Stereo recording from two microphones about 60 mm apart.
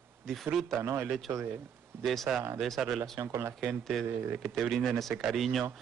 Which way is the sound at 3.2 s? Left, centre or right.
Right.